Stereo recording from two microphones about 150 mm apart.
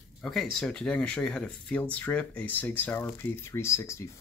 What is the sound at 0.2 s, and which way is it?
Speech, 5° left (ahead or behind).